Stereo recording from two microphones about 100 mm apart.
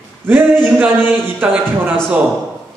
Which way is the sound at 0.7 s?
15° right (ahead or behind).